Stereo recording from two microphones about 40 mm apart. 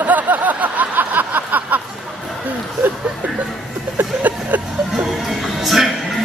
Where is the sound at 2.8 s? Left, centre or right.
Right.